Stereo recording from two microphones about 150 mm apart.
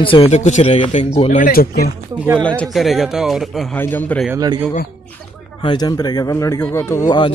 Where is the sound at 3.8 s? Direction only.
10° left (ahead or behind).